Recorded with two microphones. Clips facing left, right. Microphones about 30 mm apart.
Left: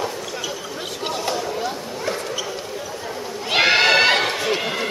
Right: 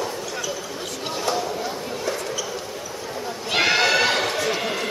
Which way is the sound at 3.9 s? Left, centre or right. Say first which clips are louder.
Left 4 dB; left.